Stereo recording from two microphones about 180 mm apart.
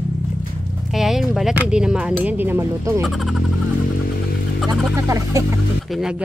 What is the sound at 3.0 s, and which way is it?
Speech, centre (ahead or behind).